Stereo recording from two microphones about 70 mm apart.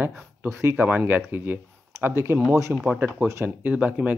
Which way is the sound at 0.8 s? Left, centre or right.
Right.